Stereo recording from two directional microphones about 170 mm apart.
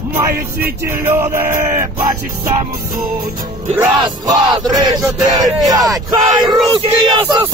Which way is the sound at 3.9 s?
25° right (ahead or behind).